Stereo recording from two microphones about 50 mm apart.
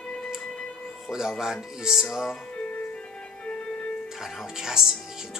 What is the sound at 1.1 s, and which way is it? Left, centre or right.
Speech, centre.